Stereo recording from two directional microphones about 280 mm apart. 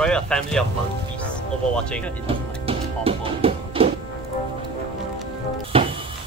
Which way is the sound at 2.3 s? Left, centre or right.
Centre.